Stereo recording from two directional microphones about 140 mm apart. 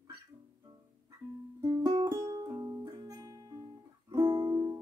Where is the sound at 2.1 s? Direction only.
25° right (ahead or behind).